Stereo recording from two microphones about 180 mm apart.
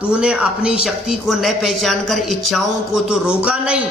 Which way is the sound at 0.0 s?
5° right (ahead or behind).